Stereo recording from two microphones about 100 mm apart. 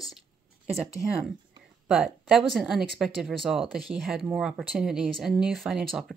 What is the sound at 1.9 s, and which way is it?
Speech, 5° right (ahead or behind).